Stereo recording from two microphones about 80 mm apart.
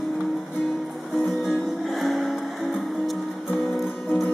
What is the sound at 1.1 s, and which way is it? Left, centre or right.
Music, centre.